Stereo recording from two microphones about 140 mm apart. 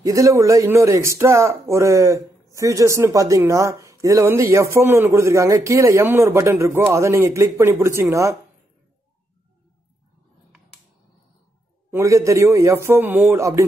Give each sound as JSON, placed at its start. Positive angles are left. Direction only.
{"t": 0.0, "sound": "speech", "side_deg": -20}
{"t": 11.9, "sound": "speech", "side_deg": -20}